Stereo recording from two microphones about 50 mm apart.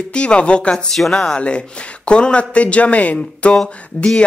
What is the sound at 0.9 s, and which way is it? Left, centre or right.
Speech, centre.